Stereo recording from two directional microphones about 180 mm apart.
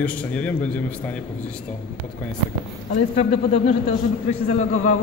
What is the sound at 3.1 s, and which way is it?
Speech, 35° left (ahead or behind).